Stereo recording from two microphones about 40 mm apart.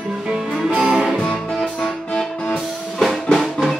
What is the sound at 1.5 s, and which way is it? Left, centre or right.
Music, centre.